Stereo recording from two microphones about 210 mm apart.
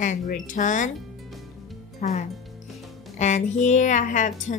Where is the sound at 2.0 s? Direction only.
35° left (ahead or behind).